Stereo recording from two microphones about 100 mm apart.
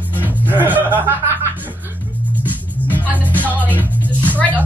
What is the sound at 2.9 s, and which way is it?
Music, 20° right (ahead or behind).